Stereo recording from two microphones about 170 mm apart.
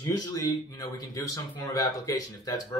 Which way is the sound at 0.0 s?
20° left (ahead or behind).